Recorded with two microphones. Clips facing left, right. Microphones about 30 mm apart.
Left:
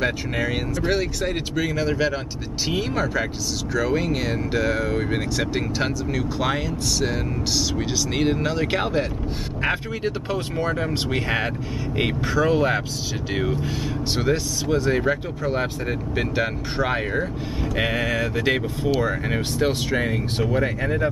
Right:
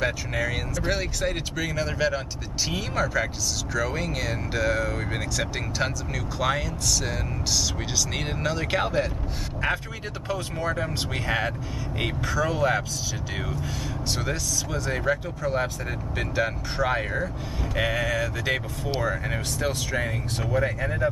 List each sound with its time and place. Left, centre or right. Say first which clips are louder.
0.0 s speech: left 3 dB; centre